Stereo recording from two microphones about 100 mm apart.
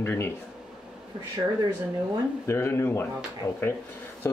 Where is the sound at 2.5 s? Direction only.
25° left (ahead or behind).